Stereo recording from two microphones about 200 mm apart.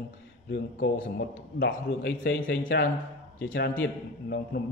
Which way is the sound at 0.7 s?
45° left (ahead or behind).